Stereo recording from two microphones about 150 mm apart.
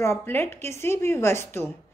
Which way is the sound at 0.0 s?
15° left (ahead or behind).